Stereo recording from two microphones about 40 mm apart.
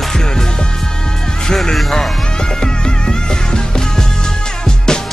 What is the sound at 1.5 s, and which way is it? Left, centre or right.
Speech, centre.